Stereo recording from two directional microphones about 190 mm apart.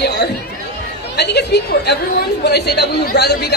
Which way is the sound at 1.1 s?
60° left (ahead or behind).